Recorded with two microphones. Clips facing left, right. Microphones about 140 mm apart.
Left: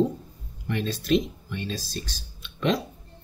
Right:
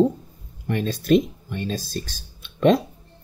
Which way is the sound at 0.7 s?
45° right (ahead or behind).